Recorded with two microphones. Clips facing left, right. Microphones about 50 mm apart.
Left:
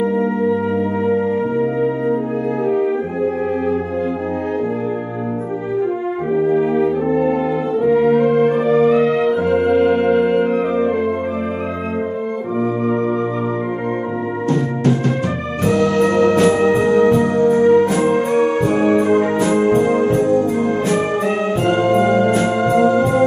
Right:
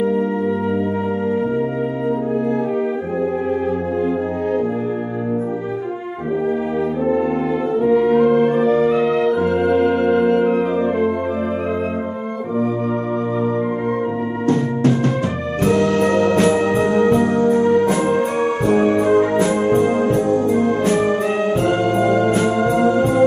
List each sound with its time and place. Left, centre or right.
7.1 s brass instrument: centre
8.2 s music: centre
16.1 s music: left
16.9 s music: centre
17.4 s music: left
18.3 s music: centre
20.1 s music: left
22.4 s music: centre